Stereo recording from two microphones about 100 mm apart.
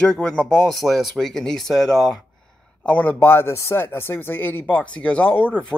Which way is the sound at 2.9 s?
15° left (ahead or behind).